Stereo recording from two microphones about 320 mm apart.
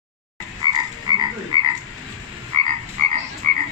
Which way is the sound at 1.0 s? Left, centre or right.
Centre.